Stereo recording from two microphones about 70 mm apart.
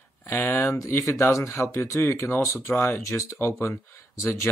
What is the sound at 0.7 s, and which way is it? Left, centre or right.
Speech, left.